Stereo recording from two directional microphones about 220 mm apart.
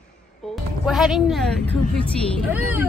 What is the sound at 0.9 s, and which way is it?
Speech, centre (ahead or behind).